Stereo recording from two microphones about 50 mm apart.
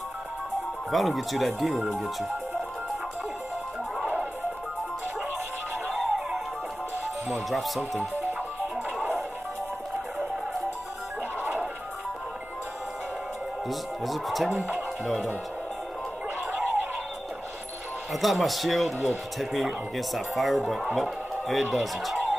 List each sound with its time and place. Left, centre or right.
0.9 s speech: centre
4.0 s music: right
5.9 s music: centre
7.2 s speech: centre
11.4 s music: right
13.7 s speech: centre
14.5 s speech: right
18.1 s speech: centre